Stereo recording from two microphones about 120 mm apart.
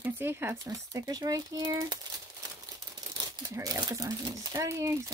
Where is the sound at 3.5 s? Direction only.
25° right (ahead or behind).